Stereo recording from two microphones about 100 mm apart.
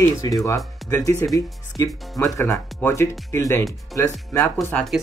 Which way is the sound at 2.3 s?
25° left (ahead or behind).